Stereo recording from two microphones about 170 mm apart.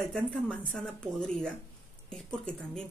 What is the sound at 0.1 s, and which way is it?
Speech, 5° left (ahead or behind).